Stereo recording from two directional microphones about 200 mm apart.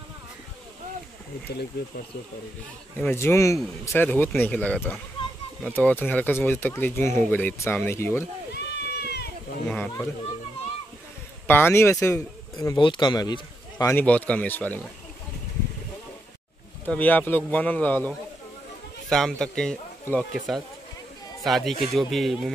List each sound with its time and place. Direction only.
3.0 s speech: 10° left (ahead or behind)
8.5 s a sound: 55° left (ahead or behind)
9.7 s speech: 10° left (ahead or behind)
11.4 s speech: 10° left (ahead or behind)
16.8 s speech: 10° left (ahead or behind)